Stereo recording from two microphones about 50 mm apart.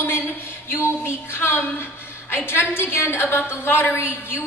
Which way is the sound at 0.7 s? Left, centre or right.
Left.